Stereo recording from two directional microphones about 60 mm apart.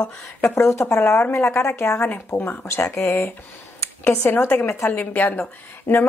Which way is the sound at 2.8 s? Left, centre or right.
Left.